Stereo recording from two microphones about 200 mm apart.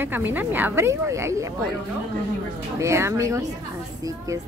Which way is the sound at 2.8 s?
15° right (ahead or behind).